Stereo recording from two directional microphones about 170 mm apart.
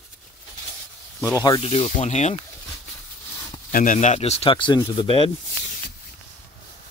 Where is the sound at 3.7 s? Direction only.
50° left (ahead or behind); by 5.3 s 30° left (ahead or behind).